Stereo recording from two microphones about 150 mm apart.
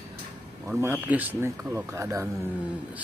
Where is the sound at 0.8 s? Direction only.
15° right (ahead or behind).